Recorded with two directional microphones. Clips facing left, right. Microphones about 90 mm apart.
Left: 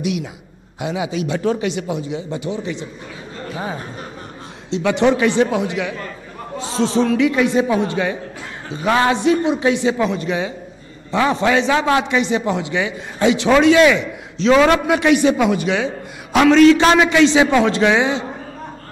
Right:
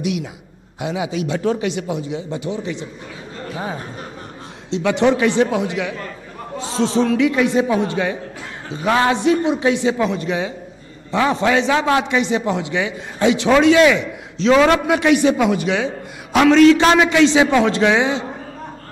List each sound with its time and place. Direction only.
0.7 s a man's voice: 15° left (ahead or behind)
4.8 s a man's voice: 15° left (ahead or behind)